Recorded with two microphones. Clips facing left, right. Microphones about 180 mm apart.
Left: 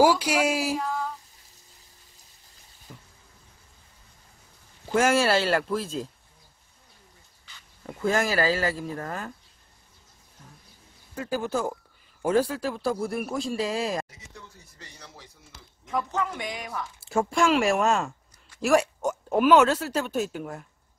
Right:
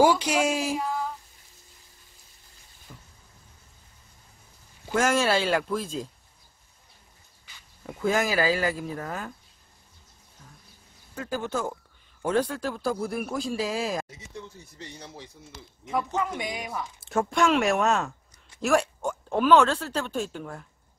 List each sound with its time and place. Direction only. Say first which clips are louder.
0.0 s speech: even; 5° left (ahead or behind)
0.7 s a sound: even; 5° right (ahead or behind)
2.9 s a sound: left 2 dB; 10° left (ahead or behind)
4.9 s speech: left 2 dB; 10° left (ahead or behind)
7.8 s speech: even; centre (ahead or behind)
11.1 s speech: left 2 dB; 5° left (ahead or behind)
14.1 s speech: right 6 dB; 25° right (ahead or behind)
15.8 s speech: right 1 dB; 10° right (ahead or behind)
17.0 s speech: even; centre (ahead or behind)